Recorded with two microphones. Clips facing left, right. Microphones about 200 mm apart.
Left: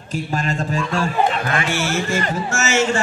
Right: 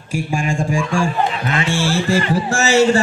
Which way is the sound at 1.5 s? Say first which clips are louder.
Right 2 dB; 25° right (ahead or behind).